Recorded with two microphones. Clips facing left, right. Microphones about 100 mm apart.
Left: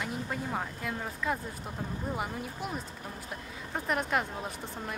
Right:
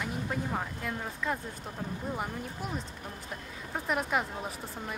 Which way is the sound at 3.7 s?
Centre (ahead or behind).